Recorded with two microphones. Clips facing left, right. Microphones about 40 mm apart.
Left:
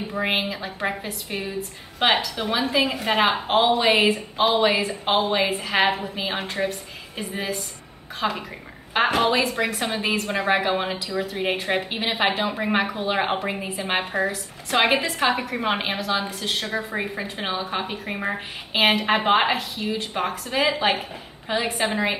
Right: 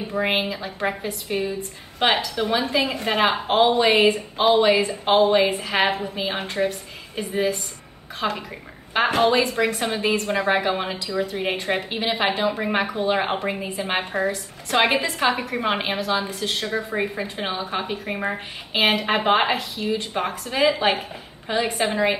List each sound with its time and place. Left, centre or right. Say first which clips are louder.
0.1 s a woman's voice: right 2 dB; centre